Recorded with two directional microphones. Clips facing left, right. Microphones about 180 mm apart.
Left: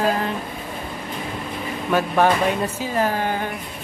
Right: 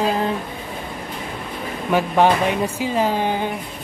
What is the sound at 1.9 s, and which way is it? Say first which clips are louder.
Speech: right 2 dB; 15° right (ahead or behind).